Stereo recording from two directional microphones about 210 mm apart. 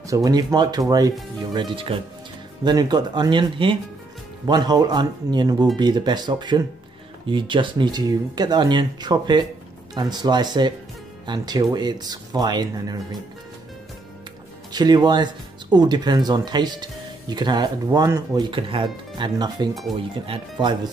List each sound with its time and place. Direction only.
0.0 s speech: 15° right (ahead or behind)
14.7 s speech: 20° right (ahead or behind)
19.7 s speech: centre (ahead or behind)
20.2 s speech: 20° right (ahead or behind)